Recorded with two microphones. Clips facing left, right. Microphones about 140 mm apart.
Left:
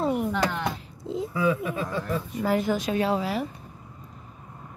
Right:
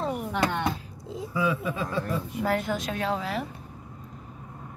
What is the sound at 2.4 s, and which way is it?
A woman's voice, centre (ahead or behind).